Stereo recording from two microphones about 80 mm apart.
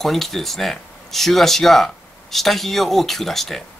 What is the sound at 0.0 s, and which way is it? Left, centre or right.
Speech, centre.